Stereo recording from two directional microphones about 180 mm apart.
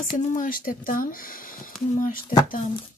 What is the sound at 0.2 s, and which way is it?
Speech, 45° left (ahead or behind).